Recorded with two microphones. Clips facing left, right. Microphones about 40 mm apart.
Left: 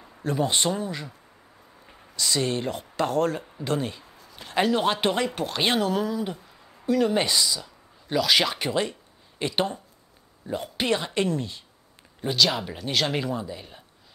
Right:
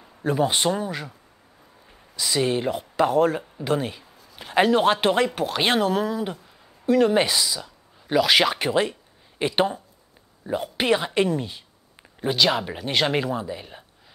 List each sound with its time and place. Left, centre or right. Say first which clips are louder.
0.2 s speech: right 3 dB; centre
2.1 s speech: right 3 dB; centre